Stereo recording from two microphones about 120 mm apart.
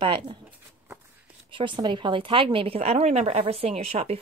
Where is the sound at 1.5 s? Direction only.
45° right (ahead or behind).